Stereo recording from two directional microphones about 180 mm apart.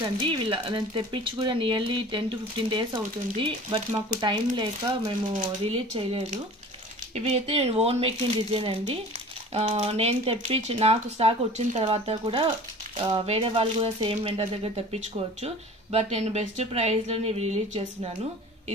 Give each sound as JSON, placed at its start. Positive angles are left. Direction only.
{"t": 0.2, "sound": "speech", "side_deg": -30}
{"t": 5.3, "sound": "speech", "side_deg": -35}